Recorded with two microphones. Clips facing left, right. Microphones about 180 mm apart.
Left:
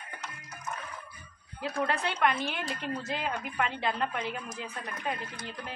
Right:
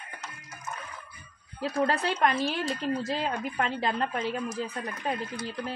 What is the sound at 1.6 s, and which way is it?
A woman's voice, 35° right (ahead or behind).